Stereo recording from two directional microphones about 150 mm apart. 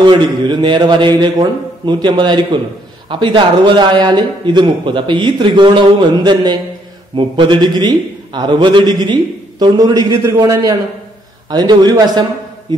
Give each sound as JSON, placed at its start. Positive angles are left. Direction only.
{"t": 0.0, "sound": "a man's voice", "side_deg": -30}